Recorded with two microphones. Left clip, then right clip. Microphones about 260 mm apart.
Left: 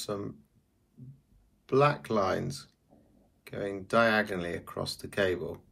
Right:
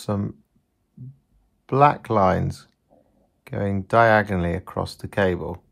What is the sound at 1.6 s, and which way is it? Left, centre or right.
Speech, right.